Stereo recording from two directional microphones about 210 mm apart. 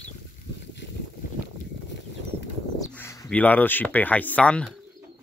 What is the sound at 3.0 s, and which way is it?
Speech, 10° left (ahead or behind).